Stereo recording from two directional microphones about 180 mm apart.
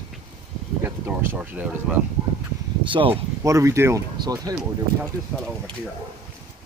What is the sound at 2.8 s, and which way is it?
Speech, 30° right (ahead or behind).